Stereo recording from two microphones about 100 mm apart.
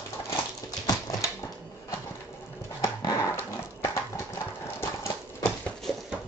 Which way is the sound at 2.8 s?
30° left (ahead or behind).